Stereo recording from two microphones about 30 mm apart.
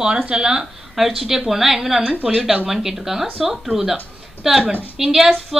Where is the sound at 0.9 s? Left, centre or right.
Centre.